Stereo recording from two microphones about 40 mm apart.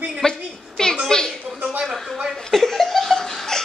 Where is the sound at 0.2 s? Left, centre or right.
Centre.